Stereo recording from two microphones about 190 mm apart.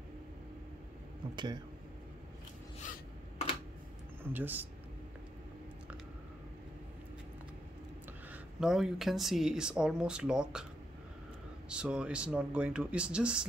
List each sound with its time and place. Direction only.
1.3 s speech: 25° right (ahead or behind)
4.2 s speech: 10° right (ahead or behind)
8.3 s speech: 5° right (ahead or behind)
11.7 s speech: 5° right (ahead or behind)